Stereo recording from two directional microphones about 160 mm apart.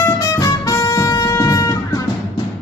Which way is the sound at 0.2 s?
20° left (ahead or behind).